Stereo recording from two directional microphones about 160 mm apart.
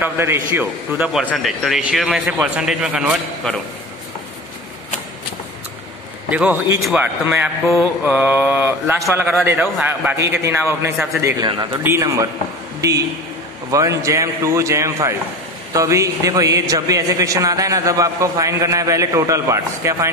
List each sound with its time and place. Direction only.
0.0 s a man's voice: 15° right (ahead or behind); by 3.6 s centre (ahead or behind)
6.3 s speech: 10° right (ahead or behind)
13.7 s a man's voice: 20° right (ahead or behind)